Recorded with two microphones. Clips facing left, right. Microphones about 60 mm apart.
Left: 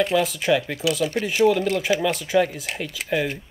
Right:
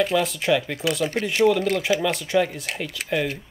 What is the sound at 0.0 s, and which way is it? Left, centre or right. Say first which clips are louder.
A man's voice: left 1 dB; centre.